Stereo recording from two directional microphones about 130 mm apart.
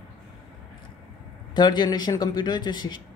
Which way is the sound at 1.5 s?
35° left (ahead or behind).